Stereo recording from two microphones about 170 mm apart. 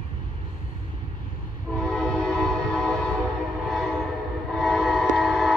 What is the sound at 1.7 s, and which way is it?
Train, centre (ahead or behind).